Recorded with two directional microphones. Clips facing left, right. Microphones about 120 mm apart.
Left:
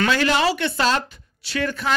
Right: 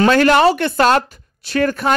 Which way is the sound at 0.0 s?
50° right (ahead or behind).